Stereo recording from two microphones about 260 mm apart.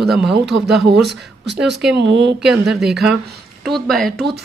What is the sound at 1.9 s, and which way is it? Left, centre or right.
Speech, right.